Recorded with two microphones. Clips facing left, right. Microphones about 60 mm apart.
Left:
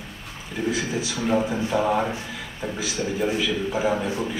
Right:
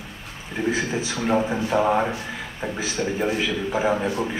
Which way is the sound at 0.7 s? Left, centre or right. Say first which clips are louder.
Right 2 dB; right.